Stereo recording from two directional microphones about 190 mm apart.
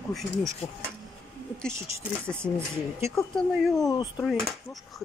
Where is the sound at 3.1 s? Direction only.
Centre (ahead or behind).